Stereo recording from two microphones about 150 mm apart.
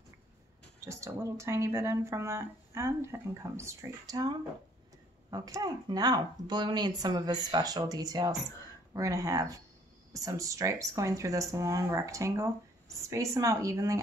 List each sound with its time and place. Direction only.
0.7 s speech: 20° right (ahead or behind)